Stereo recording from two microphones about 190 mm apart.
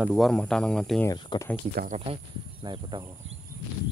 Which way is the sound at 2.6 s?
25° right (ahead or behind).